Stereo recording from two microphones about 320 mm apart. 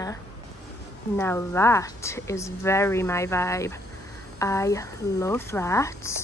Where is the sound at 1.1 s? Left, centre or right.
Centre.